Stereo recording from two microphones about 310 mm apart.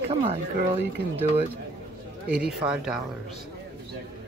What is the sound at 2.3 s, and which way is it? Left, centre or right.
Speech, centre.